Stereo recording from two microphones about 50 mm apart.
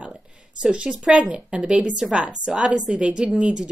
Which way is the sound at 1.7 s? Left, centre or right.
Centre.